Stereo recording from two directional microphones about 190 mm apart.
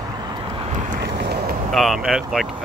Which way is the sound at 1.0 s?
60° right (ahead or behind).